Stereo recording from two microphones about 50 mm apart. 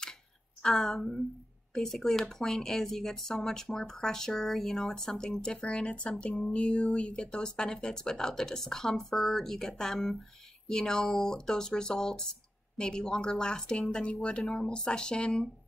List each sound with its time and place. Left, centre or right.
0.6 s speech: centre